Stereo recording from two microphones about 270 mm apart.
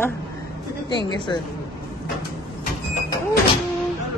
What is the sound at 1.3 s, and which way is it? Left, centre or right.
Speech, centre.